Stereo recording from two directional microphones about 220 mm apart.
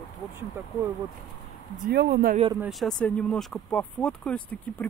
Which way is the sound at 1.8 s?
45° right (ahead or behind).